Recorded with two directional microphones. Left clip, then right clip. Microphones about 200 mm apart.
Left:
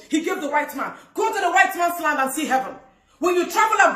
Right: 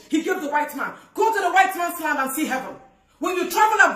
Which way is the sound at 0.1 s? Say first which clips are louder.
Even; 15° right (ahead or behind).